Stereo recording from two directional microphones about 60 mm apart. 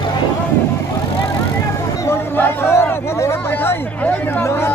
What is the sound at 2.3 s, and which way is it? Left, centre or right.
Speech, left.